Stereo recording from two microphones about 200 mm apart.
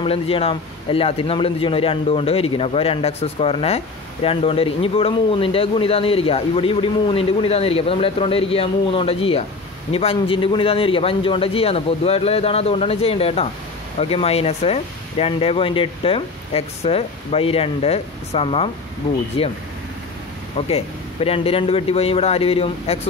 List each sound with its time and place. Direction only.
0.0 s a man's voice: 30° left (ahead or behind)
20.5 s a man's voice: 30° left (ahead or behind)